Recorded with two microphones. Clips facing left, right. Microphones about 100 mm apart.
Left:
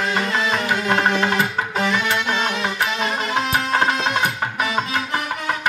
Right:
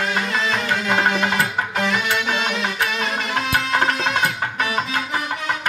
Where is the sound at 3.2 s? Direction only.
5° left (ahead or behind).